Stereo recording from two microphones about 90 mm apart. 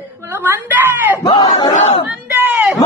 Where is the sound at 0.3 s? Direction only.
25° right (ahead or behind).